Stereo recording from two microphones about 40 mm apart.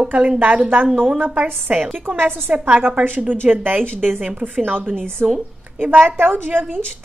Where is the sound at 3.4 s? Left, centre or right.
Right.